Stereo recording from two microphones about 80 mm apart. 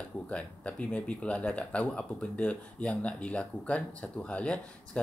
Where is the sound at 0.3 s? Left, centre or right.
Centre.